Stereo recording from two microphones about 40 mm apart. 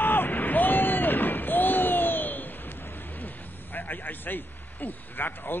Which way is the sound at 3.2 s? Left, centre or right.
Left.